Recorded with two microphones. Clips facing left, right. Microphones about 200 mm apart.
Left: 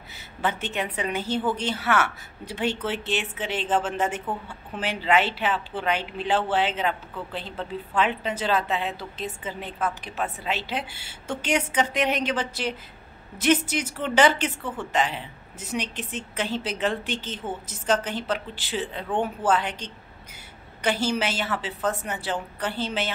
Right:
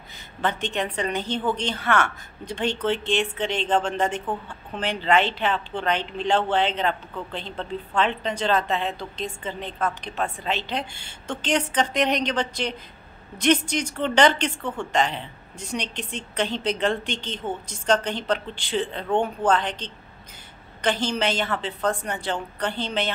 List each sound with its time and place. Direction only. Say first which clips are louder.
0.4 s speech: right 2 dB; 5° left (ahead or behind)